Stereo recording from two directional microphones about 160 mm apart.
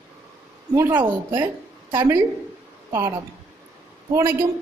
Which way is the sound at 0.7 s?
15° right (ahead or behind).